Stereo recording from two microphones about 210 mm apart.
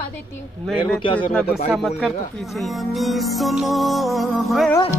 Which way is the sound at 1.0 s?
25° left (ahead or behind).